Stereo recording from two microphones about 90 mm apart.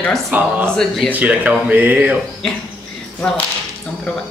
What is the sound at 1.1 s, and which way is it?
Speech, 15° right (ahead or behind).